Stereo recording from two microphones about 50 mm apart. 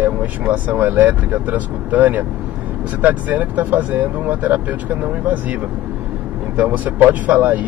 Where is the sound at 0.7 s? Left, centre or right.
Right.